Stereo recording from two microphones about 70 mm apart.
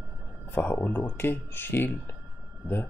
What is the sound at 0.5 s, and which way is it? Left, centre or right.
Speech, left.